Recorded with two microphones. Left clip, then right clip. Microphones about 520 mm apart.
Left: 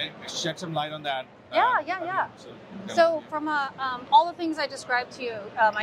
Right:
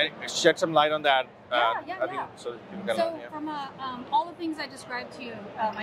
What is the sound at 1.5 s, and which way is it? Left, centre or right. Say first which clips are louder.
A woman's voice: left 4 dB; left.